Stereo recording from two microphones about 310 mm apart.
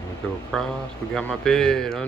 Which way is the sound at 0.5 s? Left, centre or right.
Centre.